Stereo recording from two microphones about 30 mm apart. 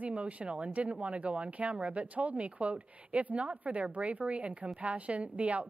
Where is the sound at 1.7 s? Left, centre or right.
Right.